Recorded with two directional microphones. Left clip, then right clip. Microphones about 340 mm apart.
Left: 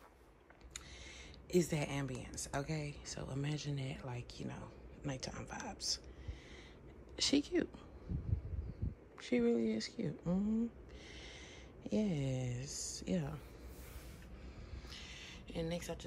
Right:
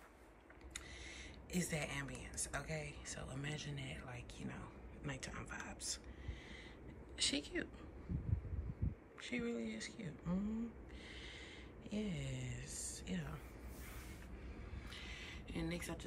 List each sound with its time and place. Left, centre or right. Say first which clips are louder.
0.7 s speech: even; centre
7.2 s speech: left 5 dB; centre
9.2 s speech: left 9 dB; centre
11.8 s speech: left 8 dB; centre
14.9 s a sound: even; centre